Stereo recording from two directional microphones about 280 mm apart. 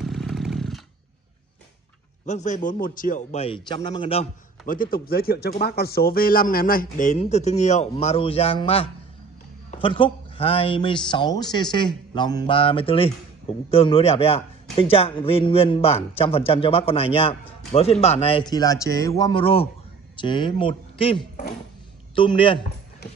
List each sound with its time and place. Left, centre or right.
0.0 s chainsaw: centre
2.2 s a man's voice: left